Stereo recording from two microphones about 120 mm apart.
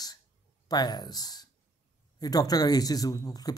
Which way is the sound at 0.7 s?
35° left (ahead or behind).